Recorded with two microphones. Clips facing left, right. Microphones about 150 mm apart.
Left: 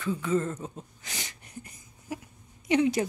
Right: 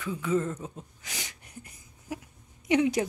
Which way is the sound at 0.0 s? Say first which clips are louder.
Left 1 dB; 10° right (ahead or behind).